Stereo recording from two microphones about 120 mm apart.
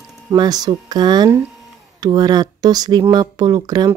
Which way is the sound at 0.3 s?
35° right (ahead or behind).